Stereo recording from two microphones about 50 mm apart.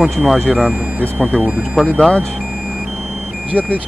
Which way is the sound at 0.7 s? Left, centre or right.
Right.